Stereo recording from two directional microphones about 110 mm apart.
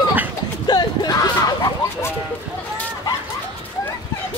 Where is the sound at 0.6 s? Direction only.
40° left (ahead or behind).